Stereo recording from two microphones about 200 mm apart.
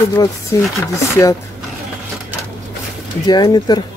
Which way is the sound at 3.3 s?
20° left (ahead or behind).